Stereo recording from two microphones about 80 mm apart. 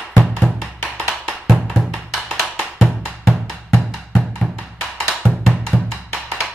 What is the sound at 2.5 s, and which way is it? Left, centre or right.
Music, centre.